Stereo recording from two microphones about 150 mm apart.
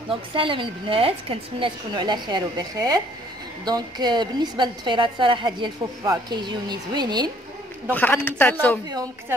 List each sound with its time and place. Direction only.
0.1 s a woman's voice: 35° right (ahead or behind)
7.9 s speech: 10° left (ahead or behind)
8.8 s a woman's voice: 25° right (ahead or behind)